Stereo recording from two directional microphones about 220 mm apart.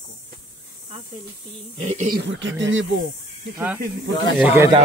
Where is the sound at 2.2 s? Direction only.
55° right (ahead or behind).